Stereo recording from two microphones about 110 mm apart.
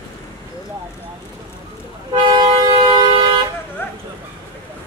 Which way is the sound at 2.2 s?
40° right (ahead or behind).